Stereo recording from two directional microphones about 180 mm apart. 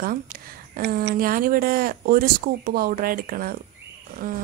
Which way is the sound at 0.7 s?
55° right (ahead or behind).